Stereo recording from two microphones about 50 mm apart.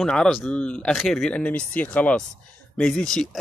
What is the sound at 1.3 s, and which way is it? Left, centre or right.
Speech, left.